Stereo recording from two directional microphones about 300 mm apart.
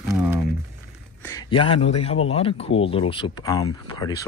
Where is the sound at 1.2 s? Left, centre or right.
Centre.